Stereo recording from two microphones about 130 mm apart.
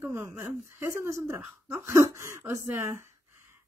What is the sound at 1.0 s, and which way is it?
Female singing, 20° right (ahead or behind).